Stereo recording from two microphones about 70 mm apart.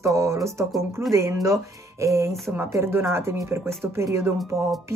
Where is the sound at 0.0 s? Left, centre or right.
Right.